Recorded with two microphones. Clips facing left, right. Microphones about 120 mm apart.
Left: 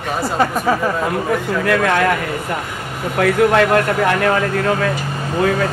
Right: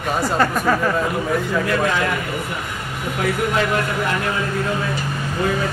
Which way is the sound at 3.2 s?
65° left (ahead or behind).